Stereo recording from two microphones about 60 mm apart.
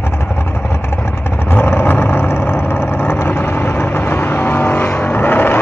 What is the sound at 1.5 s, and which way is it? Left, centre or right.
Vehicle, left.